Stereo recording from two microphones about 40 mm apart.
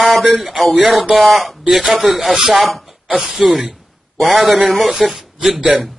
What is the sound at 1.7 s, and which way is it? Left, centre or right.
Speech, centre.